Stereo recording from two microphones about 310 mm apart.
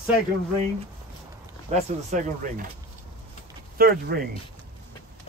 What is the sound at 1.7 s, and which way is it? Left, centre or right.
Speech, right.